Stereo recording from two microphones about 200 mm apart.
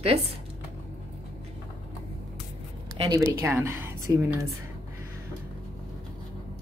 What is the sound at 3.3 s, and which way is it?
Speech, 10° right (ahead or behind).